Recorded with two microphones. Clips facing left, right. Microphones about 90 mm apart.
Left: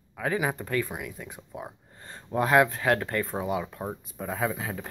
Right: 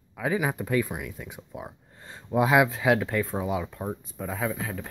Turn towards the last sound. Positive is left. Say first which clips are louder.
# even
turn(degrees=5)  # may be behind; listen again after turning